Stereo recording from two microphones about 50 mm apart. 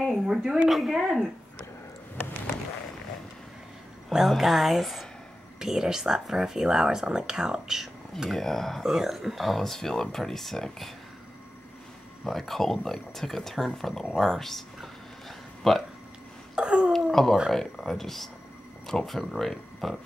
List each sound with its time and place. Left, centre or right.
0.1 s a sound: centre
0.7 s speech: centre
4.1 s speech: centre
8.3 s speech: centre
8.8 s speech: centre
12.3 s speech: centre
14.1 s a sound: centre
16.5 s a sound: right
17.1 s speech: centre